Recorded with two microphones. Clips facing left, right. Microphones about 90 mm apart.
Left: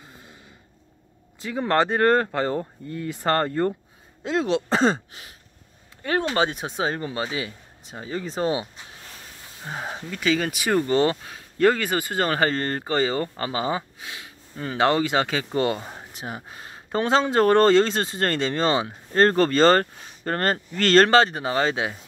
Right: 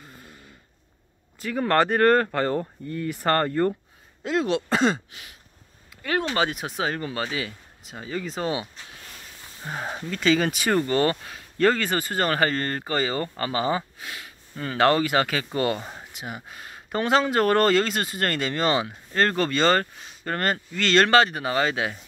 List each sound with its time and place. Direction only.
0.0 s a sound: 15° left (ahead or behind)
1.4 s speech: 20° left (ahead or behind)
6.3 s speech: 25° left (ahead or behind)
9.7 s speech: 10° left (ahead or behind)
10.9 s speech: 20° left (ahead or behind)
16.1 s speech: 35° left (ahead or behind)